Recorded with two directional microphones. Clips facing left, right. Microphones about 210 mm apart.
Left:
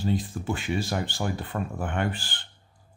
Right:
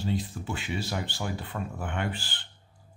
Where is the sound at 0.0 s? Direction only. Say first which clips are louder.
Left 3 dB; 50° left (ahead or behind).